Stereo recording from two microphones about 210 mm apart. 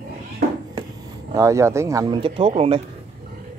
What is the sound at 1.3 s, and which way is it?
Speech, 15° right (ahead or behind).